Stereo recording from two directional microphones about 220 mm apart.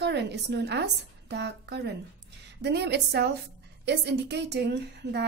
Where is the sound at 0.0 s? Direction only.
50° right (ahead or behind).